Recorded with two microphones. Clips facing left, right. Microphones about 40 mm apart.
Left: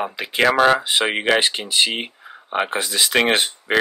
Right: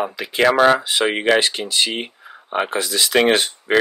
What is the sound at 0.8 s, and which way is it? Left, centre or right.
Speech, left.